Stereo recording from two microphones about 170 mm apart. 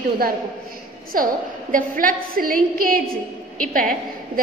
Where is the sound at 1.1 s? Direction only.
55° right (ahead or behind).